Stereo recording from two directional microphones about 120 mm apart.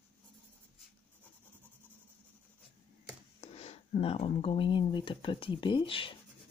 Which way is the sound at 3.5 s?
60° left (ahead or behind).